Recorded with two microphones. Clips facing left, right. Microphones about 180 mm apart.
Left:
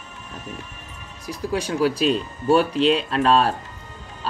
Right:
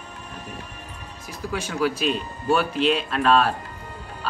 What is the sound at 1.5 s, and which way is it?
Speech, 30° left (ahead or behind).